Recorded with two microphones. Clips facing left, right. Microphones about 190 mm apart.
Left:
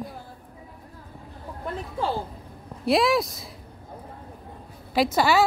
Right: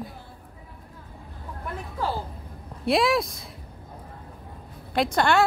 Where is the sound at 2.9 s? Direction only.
Centre (ahead or behind).